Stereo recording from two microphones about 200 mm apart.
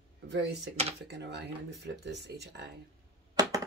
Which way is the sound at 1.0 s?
60° right (ahead or behind).